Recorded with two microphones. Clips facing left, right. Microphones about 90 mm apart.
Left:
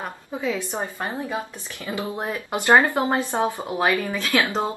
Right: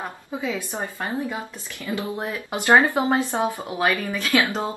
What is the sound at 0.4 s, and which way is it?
Speech, 20° right (ahead or behind).